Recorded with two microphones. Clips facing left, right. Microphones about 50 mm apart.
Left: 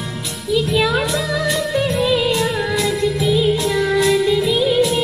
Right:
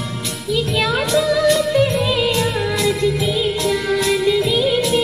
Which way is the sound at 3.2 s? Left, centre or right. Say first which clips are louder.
Left 3 dB; right.